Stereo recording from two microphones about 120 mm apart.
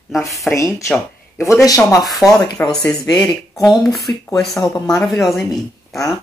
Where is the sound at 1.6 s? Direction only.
25° left (ahead or behind).